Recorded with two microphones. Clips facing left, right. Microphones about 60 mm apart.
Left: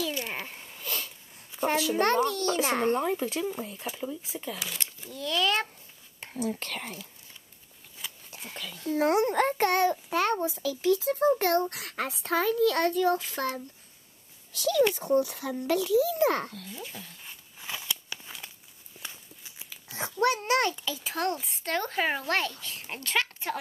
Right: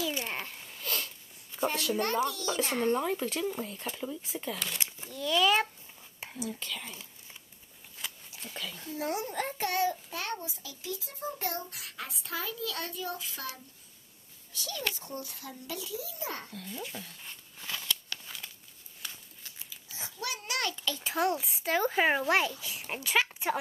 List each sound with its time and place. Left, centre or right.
0.5 s sniff: centre
2.0 s a child's voice: left
3.0 s speech: centre
6.6 s a child's voice: left
8.0 s a sound: centre
8.8 s a child's voice: left
14.5 s a child's voice: left
16.6 s a sound: centre
19.7 s a sound: left
20.7 s a child's voice: centre
21.0 s speech: centre